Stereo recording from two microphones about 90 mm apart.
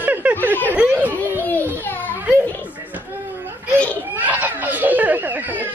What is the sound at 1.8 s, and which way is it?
Children playing, 20° left (ahead or behind).